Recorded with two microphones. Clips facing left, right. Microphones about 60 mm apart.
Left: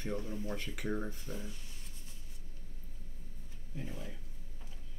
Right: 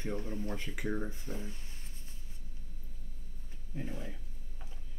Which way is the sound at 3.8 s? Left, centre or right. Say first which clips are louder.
Right 3 dB; right.